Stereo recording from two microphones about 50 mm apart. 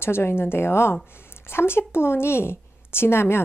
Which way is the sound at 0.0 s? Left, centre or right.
Left.